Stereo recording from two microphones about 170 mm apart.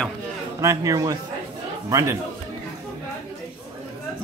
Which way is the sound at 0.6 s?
20° right (ahead or behind).